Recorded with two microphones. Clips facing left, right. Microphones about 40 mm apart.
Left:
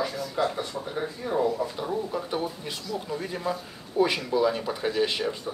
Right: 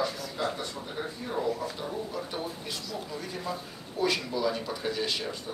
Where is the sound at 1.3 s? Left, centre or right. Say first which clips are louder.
Left 5 dB; left.